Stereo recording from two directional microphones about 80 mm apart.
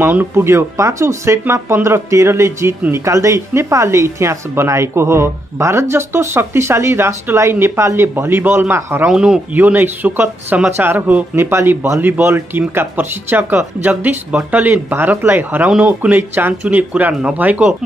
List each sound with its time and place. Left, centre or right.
0.0 s speech: right
9.0 s speech: centre
9.5 s speech: right